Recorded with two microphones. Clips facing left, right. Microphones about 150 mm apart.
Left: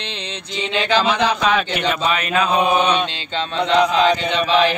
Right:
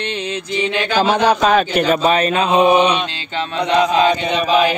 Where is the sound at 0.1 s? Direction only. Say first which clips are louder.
Right 7 dB; 5° right (ahead or behind).